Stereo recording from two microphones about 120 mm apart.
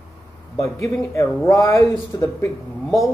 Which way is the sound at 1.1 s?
25° left (ahead or behind).